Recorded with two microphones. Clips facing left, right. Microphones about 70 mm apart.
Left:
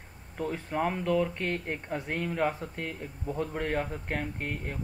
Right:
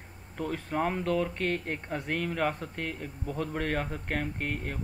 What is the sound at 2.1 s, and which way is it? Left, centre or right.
A man's voice, centre.